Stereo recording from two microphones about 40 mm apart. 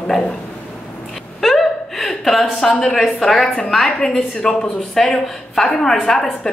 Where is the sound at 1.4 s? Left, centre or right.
Centre.